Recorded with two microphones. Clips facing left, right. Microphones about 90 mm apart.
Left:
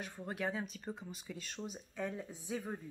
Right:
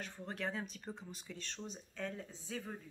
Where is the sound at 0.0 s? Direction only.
10° left (ahead or behind).